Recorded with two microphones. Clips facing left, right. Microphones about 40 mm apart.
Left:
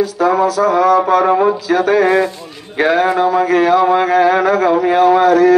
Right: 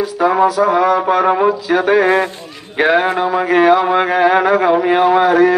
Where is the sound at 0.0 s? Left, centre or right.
Centre.